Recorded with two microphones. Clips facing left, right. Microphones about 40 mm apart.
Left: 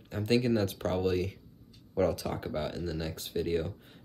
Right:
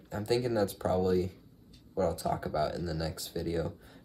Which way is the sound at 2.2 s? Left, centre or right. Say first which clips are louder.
Right 3 dB; left.